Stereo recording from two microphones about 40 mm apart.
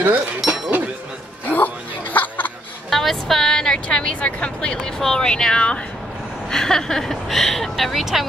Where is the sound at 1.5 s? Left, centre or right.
Left.